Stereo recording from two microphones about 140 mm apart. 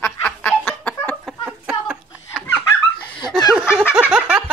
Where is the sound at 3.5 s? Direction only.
5° right (ahead or behind).